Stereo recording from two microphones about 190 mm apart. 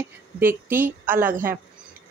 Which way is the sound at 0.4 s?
10° right (ahead or behind).